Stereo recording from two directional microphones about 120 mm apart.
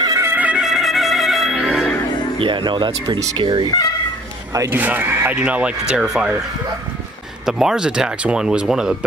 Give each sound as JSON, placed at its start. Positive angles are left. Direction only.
{"t": 0.0, "sound": "music", "side_deg": -25}
{"t": 2.3, "sound": "speech", "side_deg": -45}
{"t": 4.6, "sound": "speech", "side_deg": -15}
{"t": 7.4, "sound": "speech", "side_deg": -5}